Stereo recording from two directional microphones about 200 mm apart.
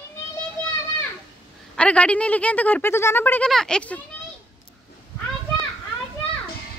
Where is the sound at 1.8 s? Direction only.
5° left (ahead or behind).